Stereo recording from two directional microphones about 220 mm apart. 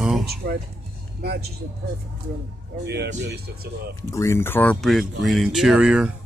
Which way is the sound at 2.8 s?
50° right (ahead or behind).